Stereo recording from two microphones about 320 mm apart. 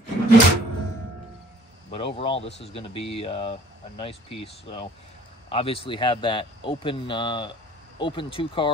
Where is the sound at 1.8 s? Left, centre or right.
Centre.